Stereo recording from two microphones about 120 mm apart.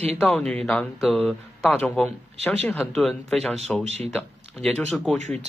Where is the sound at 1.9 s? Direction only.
Centre (ahead or behind).